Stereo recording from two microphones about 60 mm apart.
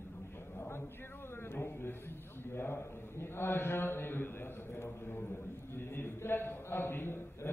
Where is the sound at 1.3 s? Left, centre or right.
Left.